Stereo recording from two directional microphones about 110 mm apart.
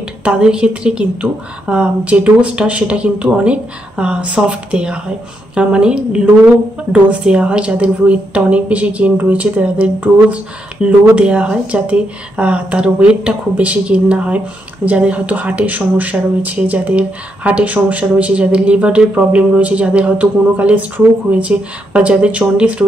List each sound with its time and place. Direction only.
0.2 s speech: 10° right (ahead or behind)